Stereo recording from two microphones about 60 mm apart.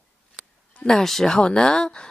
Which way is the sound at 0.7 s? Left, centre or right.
Centre.